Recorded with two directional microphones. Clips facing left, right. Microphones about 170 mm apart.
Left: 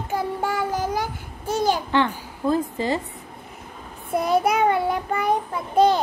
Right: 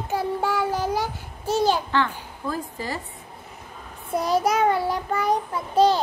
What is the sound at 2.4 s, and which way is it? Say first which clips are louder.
Speech: left 8 dB; 20° left (ahead or behind).